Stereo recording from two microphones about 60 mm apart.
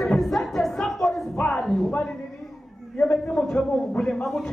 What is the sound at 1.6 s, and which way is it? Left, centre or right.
Music, centre.